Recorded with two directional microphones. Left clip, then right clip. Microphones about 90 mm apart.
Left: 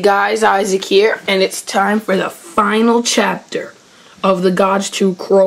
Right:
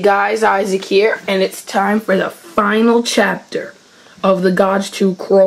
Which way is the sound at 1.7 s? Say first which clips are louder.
Right 2 dB; 30° left (ahead or behind).